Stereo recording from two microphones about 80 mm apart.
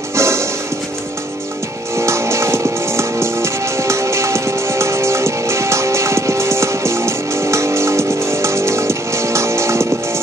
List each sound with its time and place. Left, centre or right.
0.1 s music: right
2.0 s music: right